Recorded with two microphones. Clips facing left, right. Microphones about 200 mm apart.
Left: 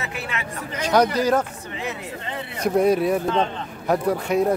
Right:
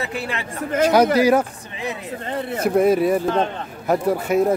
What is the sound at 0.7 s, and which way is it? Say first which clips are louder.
Speech: right 12 dB; 50° right (ahead or behind).